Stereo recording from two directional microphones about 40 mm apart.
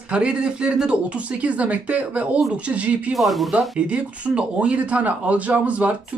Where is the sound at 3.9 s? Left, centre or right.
Right.